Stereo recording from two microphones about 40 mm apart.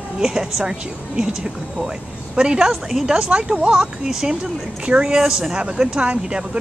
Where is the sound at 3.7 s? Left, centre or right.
Centre.